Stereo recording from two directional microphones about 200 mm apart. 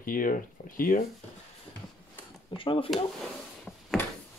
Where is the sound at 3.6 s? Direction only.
5° left (ahead or behind).